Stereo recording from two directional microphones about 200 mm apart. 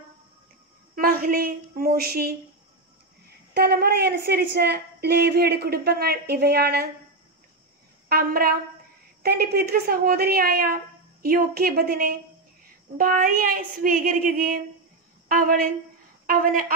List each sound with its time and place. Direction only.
0.9 s speech: 45° right (ahead or behind)
3.5 s a woman's voice: 50° right (ahead or behind)
8.1 s a woman's voice: 50° right (ahead or behind)